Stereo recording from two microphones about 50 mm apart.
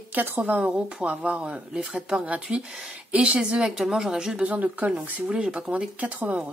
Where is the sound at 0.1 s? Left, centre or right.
Right.